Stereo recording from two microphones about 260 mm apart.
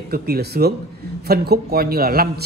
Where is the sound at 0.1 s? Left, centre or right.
Right.